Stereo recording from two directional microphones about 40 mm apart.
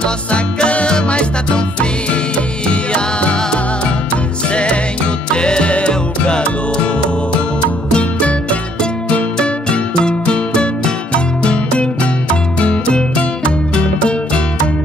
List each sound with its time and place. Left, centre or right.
0.0 s music: left
5.3 s music: left
7.9 s music: left